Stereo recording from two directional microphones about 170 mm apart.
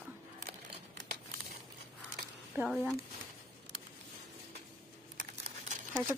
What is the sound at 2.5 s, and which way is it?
Speech, centre (ahead or behind).